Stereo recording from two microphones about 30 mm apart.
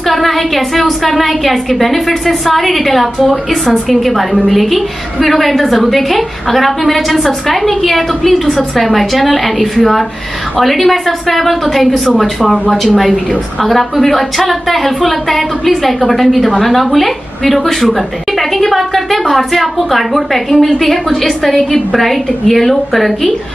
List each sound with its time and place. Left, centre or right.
0.1 s a woman's voice: centre